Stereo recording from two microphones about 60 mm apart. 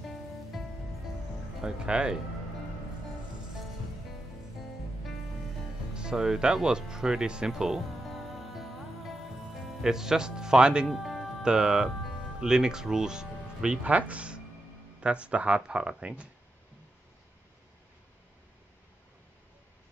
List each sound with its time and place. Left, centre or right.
1.6 s speech: centre
5.9 s speech: centre
8.1 s music: centre
9.8 s speech: centre
10.9 s music: centre
11.4 s speech: centre
13.8 s speech: right